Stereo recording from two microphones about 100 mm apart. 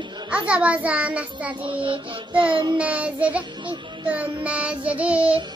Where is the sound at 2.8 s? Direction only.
15° right (ahead or behind).